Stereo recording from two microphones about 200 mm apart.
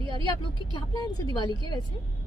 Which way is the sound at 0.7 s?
20° left (ahead or behind).